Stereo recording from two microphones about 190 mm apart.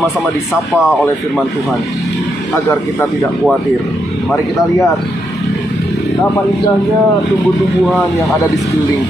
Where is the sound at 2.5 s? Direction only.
15° left (ahead or behind).